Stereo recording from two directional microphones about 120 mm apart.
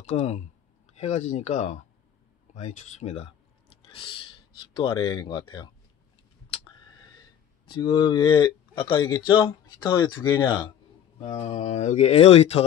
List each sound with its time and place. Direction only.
0.1 s speech: 70° left (ahead or behind)
3.9 s speech: 45° left (ahead or behind)
6.5 s a sound: 40° left (ahead or behind)
10.0 s speech: 40° left (ahead or behind)
11.1 s speech: 60° left (ahead or behind)